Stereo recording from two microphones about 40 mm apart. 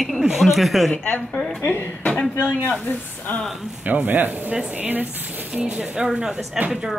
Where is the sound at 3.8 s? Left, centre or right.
Right.